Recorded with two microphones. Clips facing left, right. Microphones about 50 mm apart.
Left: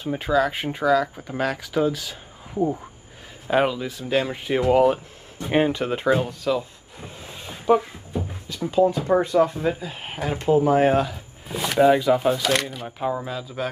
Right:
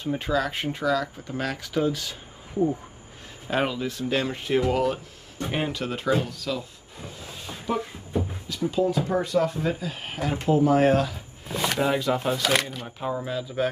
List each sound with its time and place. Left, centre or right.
0.0 s speech: centre
4.6 s speech: centre
9.0 s speech: left
11.4 s speech: centre
13.2 s speech: centre